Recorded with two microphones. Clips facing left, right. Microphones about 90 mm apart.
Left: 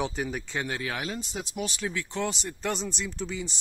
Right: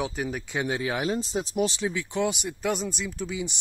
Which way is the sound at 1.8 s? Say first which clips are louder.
Right 4 dB; 10° right (ahead or behind).